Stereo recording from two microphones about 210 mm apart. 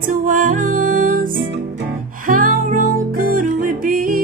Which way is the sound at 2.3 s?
40° right (ahead or behind).